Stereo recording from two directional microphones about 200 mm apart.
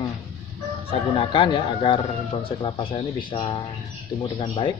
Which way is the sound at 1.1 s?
25° left (ahead or behind).